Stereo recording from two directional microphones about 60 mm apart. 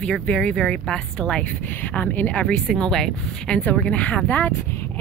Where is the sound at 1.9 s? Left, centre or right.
Left.